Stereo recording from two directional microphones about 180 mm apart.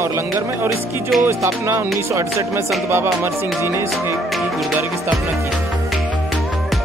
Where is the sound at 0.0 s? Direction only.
15° right (ahead or behind).